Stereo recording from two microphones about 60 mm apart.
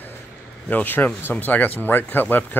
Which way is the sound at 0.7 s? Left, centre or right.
Left.